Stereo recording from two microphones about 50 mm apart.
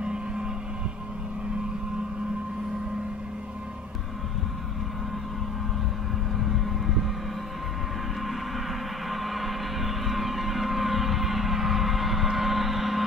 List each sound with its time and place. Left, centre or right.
0.0 s vehicle: centre
6.3 s vehicle: centre
9.1 s vehicle: centre